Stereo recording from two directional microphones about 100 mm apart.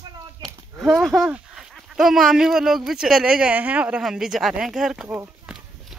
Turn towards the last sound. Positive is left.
turn(degrees=-5)  # may be behind; listen again after turning